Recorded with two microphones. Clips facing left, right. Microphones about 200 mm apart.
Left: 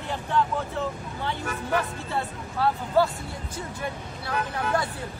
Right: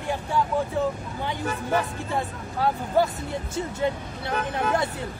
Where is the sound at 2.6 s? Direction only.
15° right (ahead or behind).